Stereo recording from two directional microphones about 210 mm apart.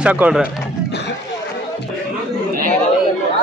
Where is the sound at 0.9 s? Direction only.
55° left (ahead or behind).